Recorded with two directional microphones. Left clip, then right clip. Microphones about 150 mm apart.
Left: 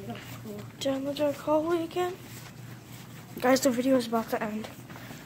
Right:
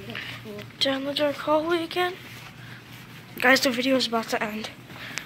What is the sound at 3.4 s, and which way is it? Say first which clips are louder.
Speech: right 4 dB; 20° left (ahead or behind).